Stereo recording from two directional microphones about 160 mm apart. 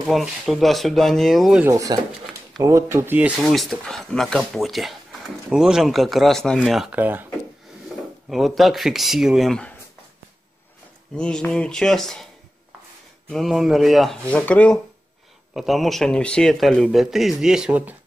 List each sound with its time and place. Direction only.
0.1 s speech: centre (ahead or behind)
1.6 s speech: 20° right (ahead or behind)
3.3 s speech: centre (ahead or behind)
8.3 s speech: centre (ahead or behind)
11.1 s speech: 5° left (ahead or behind)
13.3 s speech: centre (ahead or behind)